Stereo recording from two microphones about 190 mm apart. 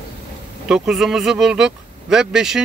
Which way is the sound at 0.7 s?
Centre (ahead or behind).